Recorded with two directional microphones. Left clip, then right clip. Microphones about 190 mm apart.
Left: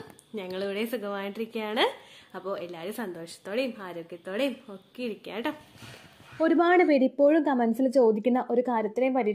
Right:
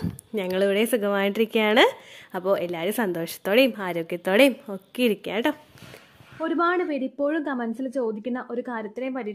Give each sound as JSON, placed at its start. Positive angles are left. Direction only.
{"t": 0.3, "sound": "a woman's voice", "side_deg": -40}
{"t": 6.4, "sound": "a woman's voice", "side_deg": 10}